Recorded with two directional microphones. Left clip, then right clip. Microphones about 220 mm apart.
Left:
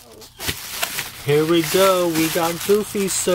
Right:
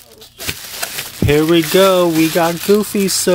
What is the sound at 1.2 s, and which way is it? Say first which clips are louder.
Speech: right 5 dB; 50° right (ahead or behind).